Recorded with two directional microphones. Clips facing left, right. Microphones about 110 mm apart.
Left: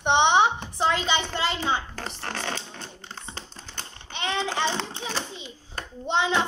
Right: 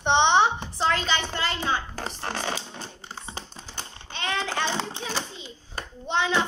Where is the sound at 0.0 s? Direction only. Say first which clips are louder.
Even; 15° left (ahead or behind).